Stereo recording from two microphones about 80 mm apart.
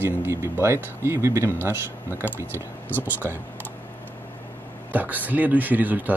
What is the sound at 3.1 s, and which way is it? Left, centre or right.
Speech, right.